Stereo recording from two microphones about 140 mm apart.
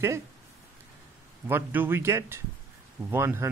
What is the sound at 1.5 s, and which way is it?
Speech, 15° right (ahead or behind).